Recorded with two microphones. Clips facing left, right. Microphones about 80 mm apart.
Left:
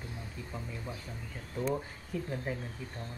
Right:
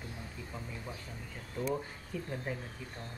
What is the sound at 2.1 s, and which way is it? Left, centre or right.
Speech, centre.